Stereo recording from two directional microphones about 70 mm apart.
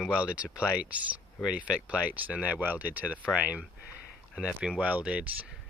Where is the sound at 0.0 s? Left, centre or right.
Centre.